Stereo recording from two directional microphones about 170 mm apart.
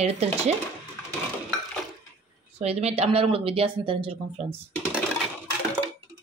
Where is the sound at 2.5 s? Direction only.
40° right (ahead or behind).